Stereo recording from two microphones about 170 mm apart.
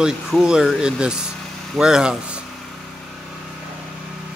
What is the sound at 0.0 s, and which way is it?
Speech, 5° right (ahead or behind).